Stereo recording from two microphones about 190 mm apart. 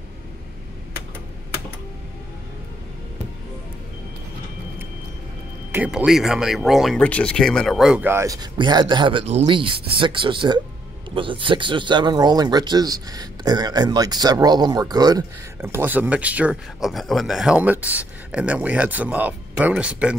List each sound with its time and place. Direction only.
5.7 s speech: 5° right (ahead or behind)